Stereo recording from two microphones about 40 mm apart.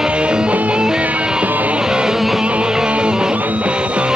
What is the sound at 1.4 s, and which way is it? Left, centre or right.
Music, right.